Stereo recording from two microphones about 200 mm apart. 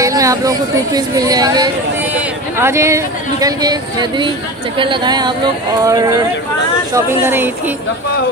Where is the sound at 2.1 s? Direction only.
5° right (ahead or behind).